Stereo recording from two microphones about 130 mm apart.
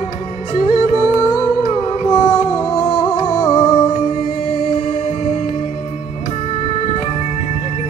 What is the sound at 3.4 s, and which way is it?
Music, 30° left (ahead or behind).